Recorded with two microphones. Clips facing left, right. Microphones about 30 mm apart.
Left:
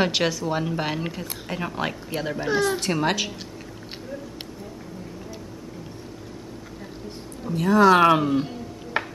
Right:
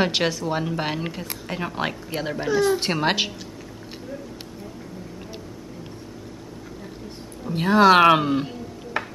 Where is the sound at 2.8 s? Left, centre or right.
Right.